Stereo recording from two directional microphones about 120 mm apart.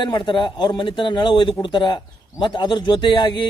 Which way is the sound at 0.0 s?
40° left (ahead or behind).